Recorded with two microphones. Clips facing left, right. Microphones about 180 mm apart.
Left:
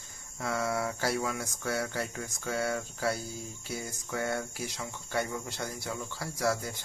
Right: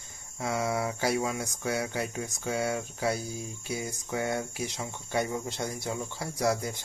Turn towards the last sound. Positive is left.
turn(degrees=-20)  # may be behind; listen again after turning